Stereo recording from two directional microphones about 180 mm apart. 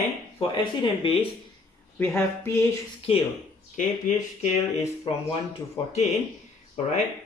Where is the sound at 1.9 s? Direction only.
10° left (ahead or behind).